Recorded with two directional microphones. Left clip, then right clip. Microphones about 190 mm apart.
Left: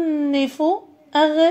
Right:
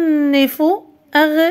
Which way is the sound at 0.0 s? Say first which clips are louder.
Right 6 dB; 45° right (ahead or behind).